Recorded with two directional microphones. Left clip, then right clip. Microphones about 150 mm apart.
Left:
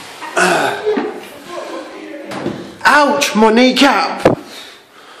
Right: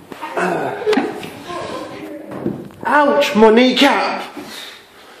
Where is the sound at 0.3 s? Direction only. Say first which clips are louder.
Left 6 dB; 30° left (ahead or behind).